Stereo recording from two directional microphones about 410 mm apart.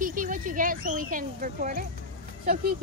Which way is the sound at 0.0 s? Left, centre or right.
Centre.